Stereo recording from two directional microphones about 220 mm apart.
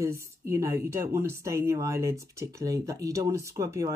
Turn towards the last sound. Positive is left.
turn(degrees=-15)  # may be behind; listen again after turning